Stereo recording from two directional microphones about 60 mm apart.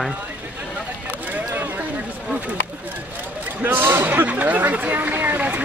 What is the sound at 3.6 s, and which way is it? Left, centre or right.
Speech, right.